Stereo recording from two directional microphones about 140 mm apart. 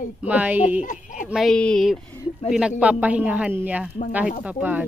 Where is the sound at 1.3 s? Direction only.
Centre (ahead or behind).